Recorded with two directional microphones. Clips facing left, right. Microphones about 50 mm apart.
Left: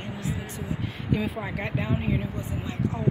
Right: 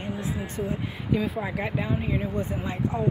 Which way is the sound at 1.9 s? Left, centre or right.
Centre.